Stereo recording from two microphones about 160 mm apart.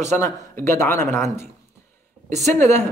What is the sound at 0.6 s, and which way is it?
Speech, 15° left (ahead or behind).